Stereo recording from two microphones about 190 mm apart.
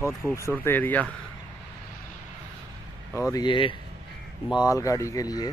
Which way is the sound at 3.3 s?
25° left (ahead or behind).